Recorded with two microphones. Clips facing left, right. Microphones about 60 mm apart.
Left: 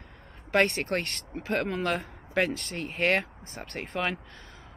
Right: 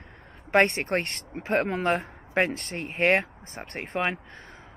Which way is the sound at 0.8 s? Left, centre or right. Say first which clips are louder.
Right 2 dB; right.